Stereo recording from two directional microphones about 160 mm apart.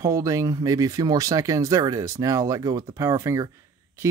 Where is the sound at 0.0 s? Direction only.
20° right (ahead or behind).